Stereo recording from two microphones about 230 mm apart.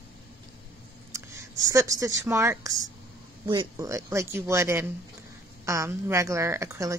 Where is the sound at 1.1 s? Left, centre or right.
Centre.